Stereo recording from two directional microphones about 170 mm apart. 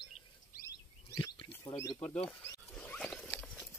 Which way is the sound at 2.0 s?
5° left (ahead or behind).